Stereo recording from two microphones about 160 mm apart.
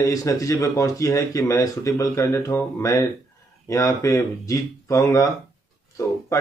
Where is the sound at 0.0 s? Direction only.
20° left (ahead or behind).